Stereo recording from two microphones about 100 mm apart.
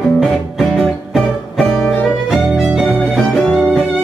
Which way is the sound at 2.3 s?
5° right (ahead or behind).